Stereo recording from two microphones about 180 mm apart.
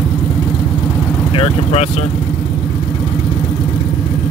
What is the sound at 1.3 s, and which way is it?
Speech, 35° left (ahead or behind).